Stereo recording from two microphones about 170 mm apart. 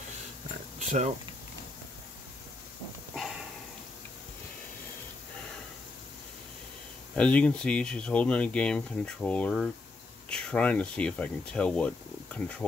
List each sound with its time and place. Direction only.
0.7 s a sound: 40° right (ahead or behind)
3.2 s sniff: 5° right (ahead or behind)
7.2 s speech: 5° left (ahead or behind)